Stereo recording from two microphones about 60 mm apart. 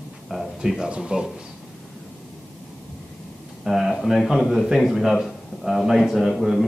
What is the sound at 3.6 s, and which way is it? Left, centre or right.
A man's voice, centre.